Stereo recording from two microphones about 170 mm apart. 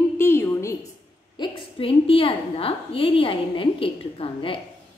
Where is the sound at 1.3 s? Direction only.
30° left (ahead or behind).